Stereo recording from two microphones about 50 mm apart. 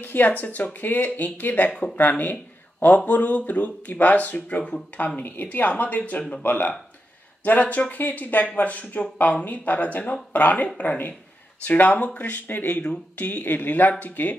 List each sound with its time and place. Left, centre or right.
0.0 s speech: left